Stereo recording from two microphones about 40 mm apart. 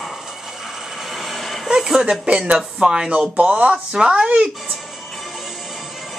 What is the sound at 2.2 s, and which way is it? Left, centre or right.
Speech, right.